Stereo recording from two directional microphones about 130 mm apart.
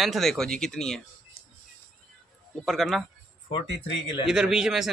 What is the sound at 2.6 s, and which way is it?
Speech, centre (ahead or behind).